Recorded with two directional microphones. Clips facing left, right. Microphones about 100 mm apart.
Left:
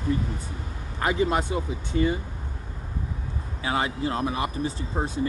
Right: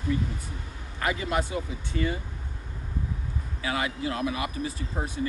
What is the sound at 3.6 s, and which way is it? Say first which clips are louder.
Speech: left 3 dB; 30° left (ahead or behind).